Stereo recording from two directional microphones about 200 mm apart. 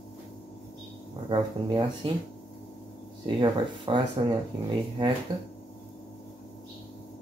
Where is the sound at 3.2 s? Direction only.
25° right (ahead or behind).